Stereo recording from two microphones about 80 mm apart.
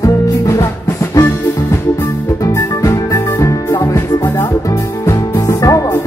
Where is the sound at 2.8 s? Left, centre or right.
Left.